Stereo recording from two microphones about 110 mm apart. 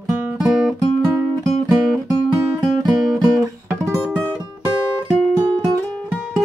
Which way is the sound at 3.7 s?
25° right (ahead or behind).